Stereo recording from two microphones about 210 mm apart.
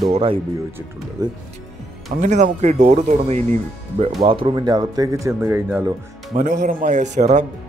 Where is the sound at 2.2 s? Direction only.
35° right (ahead or behind); by 5.9 s 10° right (ahead or behind).